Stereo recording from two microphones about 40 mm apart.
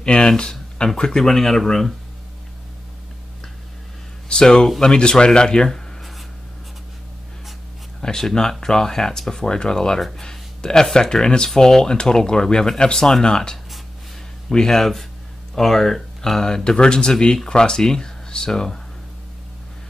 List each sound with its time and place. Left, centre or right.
0.0 s speech: left; by 1.9 s centre
4.3 s speech: centre
5.7 s writing: centre
8.0 s speech: centre